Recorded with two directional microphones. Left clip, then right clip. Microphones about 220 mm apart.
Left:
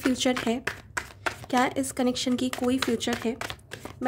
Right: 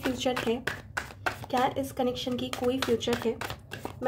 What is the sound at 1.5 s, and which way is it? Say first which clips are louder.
Speech: left 3 dB; 45° left (ahead or behind).